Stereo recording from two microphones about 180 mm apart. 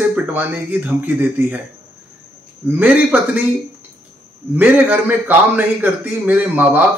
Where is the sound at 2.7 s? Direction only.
10° right (ahead or behind).